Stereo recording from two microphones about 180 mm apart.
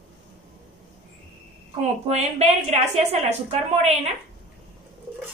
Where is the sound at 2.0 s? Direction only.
35° right (ahead or behind).